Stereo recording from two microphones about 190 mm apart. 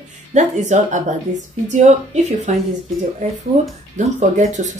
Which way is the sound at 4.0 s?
40° right (ahead or behind).